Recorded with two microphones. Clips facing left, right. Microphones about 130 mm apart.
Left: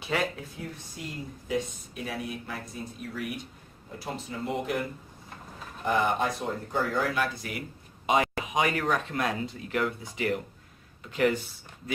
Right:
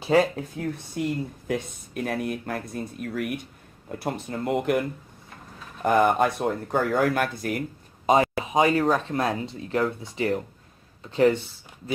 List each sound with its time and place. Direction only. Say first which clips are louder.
0.0 s speech: right 9 dB; 40° right (ahead or behind)
1.0 s speech: right 12 dB; 65° right (ahead or behind)
5.9 s speech: right 6 dB; 50° right (ahead or behind)
8.1 s speech: right 5 dB; 35° right (ahead or behind)